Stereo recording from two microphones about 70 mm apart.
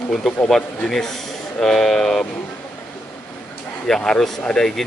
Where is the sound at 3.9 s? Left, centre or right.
Centre.